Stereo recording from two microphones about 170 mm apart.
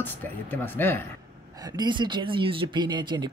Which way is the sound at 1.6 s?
25° right (ahead or behind).